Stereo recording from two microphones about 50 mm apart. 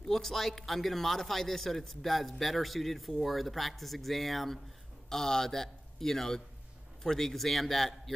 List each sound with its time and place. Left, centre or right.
0.1 s a man's voice: centre